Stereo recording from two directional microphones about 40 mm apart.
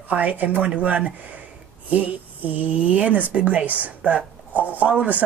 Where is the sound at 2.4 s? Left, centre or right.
Right.